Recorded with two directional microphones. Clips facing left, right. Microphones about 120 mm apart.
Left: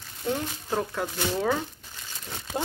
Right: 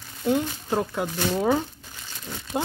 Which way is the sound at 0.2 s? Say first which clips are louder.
Right 6 dB; 15° right (ahead or behind).